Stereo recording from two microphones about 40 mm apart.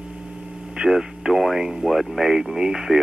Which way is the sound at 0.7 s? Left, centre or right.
Centre.